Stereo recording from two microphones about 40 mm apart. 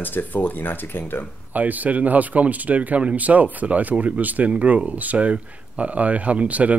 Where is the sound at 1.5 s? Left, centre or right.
Right.